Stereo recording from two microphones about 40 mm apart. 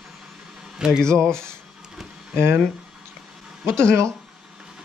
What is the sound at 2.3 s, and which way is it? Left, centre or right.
Speech, right.